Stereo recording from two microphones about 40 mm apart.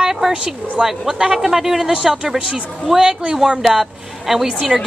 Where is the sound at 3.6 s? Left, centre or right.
Centre.